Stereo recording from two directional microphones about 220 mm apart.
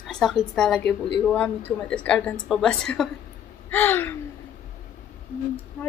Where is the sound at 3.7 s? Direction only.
10° left (ahead or behind).